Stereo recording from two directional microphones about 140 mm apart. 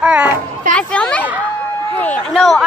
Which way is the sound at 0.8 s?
10° left (ahead or behind).